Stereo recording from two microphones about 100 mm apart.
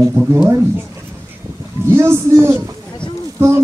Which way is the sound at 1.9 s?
25° right (ahead or behind).